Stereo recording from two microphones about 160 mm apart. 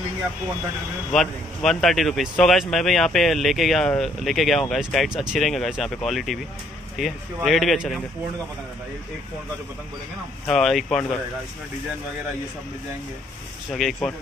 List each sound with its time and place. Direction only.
1.1 s speech: centre (ahead or behind)
10.4 s speech: centre (ahead or behind)
13.7 s speech: centre (ahead or behind)